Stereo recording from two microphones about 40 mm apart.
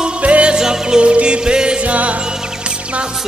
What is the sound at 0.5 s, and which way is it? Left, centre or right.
Music, centre.